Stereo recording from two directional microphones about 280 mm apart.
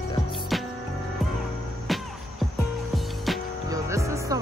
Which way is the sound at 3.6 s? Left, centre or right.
Centre.